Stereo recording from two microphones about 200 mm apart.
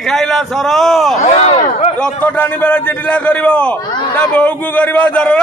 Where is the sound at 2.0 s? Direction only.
5° left (ahead or behind).